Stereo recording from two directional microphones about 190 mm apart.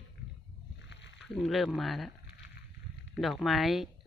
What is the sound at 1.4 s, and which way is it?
Speech, centre (ahead or behind).